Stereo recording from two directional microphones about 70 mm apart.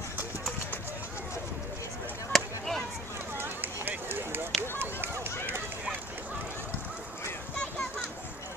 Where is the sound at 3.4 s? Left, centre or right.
Right.